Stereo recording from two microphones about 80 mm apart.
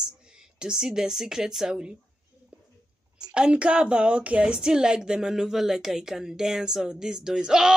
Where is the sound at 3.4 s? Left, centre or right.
Centre.